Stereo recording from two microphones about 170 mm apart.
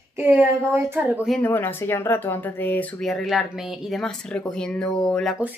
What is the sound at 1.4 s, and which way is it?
Speech, 10° left (ahead or behind).